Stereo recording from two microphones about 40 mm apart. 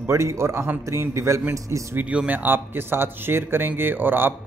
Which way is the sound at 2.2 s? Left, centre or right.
Right.